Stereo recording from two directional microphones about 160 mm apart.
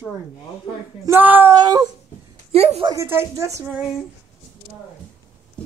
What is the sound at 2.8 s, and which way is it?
Speech, 15° right (ahead or behind).